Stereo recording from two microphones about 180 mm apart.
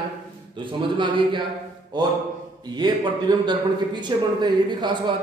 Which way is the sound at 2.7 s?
25° right (ahead or behind).